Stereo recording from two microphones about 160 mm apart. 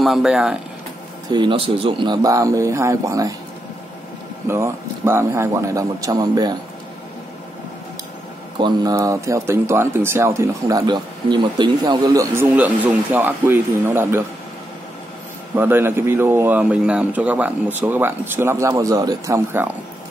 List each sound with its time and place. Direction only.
0.0 s speech: centre (ahead or behind)
1.3 s speech: 30° right (ahead or behind)
4.5 s speech: 15° right (ahead or behind)
8.5 s speech: 25° right (ahead or behind)
15.5 s speech: 15° right (ahead or behind)